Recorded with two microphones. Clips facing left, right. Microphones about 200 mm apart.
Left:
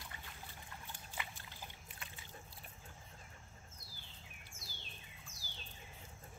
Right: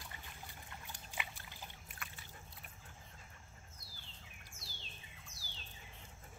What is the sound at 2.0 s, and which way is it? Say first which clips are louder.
Boat: right 2 dB; 25° left (ahead or behind).